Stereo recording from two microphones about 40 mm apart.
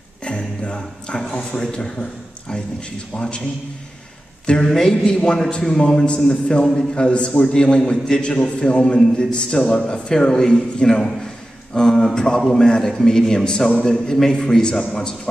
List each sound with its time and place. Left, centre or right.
0.2 s a sound: left
3.2 s a man's voice: left
4.5 s a man's voice: left